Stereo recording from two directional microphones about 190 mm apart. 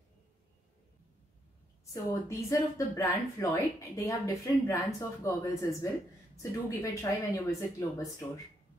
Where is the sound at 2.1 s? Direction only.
15° left (ahead or behind).